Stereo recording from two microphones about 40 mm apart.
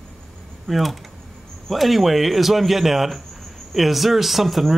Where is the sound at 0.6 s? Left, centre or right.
Centre.